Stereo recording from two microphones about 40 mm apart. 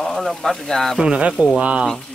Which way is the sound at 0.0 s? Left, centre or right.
Centre.